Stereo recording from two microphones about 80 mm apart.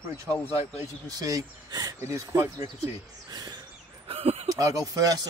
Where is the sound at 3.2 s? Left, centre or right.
Right.